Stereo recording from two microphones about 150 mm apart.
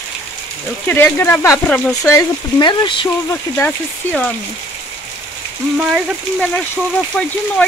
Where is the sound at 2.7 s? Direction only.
35° left (ahead or behind).